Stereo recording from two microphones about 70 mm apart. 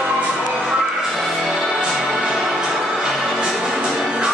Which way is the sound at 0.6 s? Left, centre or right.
Centre.